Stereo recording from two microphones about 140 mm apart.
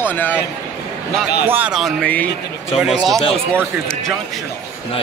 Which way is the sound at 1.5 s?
10° right (ahead or behind).